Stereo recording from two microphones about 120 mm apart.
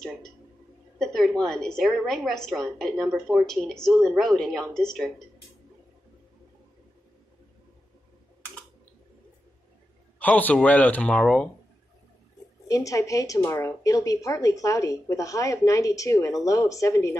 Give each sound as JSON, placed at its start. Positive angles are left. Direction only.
{"t": 0.9, "sound": "a sound", "side_deg": 5}
{"t": 1.4, "sound": "a woman's voice", "side_deg": 5}
{"t": 10.1, "sound": "speech", "side_deg": 15}
{"t": 12.6, "sound": "a woman's voice", "side_deg": 30}